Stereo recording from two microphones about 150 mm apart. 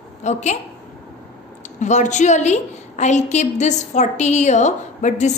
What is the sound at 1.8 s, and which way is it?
A woman's voice, 55° left (ahead or behind).